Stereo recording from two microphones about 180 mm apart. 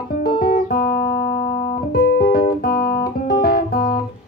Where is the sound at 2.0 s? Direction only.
60° left (ahead or behind).